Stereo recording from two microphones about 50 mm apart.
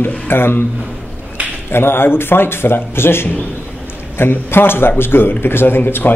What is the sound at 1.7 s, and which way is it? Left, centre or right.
Speech, left.